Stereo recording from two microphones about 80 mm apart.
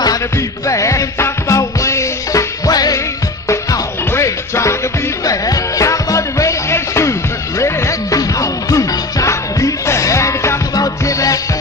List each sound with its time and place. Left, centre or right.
0.7 s music: left
3.4 s music: left